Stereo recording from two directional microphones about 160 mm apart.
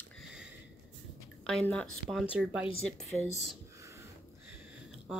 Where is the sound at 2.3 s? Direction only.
5° right (ahead or behind).